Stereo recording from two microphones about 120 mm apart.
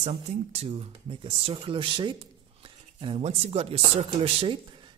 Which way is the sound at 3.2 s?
55° right (ahead or behind).